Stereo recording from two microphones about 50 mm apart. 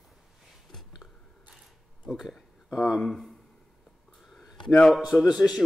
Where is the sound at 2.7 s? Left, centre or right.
Centre.